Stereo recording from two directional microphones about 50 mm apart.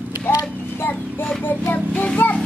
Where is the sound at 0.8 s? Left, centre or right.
Left.